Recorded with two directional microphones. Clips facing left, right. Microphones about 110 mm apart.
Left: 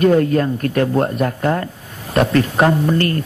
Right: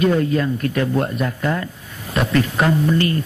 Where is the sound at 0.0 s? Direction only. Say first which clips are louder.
Left 4 dB; 50° left (ahead or behind).